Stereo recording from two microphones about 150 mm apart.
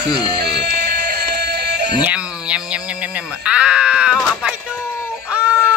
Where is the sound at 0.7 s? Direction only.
90° right.